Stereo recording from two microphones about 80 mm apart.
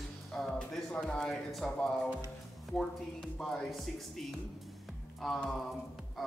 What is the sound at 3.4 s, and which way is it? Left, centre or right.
Speech, centre.